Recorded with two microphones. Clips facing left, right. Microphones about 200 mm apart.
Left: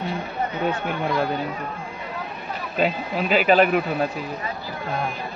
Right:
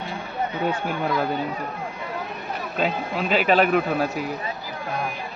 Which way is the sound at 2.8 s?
5° left (ahead or behind).